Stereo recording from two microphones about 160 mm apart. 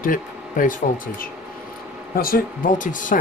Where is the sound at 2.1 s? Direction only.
65° left (ahead or behind).